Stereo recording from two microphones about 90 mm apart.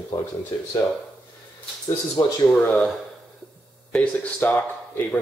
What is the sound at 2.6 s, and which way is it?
Speech, 15° left (ahead or behind).